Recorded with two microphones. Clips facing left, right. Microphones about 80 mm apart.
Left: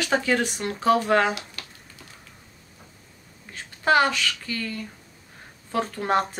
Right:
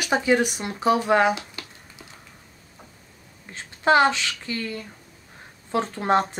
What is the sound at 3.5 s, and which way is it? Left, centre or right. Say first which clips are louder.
Speech: right 2 dB; right.